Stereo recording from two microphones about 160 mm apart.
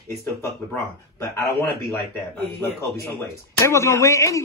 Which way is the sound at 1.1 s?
15° left (ahead or behind).